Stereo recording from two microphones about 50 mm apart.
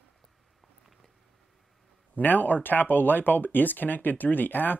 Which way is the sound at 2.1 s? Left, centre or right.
Left.